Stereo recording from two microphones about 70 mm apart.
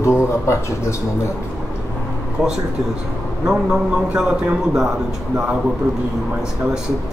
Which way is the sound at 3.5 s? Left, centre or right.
Centre.